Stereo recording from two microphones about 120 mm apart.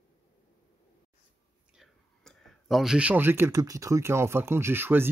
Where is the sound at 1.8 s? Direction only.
Centre (ahead or behind); by 3.5 s 15° right (ahead or behind).